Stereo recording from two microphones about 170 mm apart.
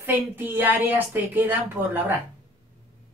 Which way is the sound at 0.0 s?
10° right (ahead or behind).